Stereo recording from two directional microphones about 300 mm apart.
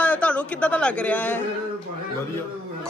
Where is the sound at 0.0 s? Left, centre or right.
Centre.